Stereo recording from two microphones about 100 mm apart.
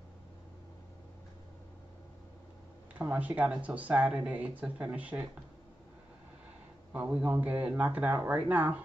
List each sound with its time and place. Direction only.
3.0 s speech: 15° right (ahead or behind)
6.9 s speech: 15° right (ahead or behind)